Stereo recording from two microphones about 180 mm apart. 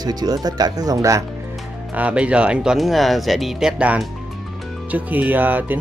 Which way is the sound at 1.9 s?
5° right (ahead or behind).